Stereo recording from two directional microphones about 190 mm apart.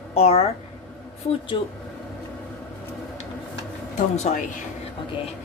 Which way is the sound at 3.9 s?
35° left (ahead or behind).